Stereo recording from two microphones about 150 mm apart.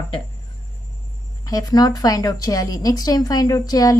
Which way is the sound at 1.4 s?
25° left (ahead or behind).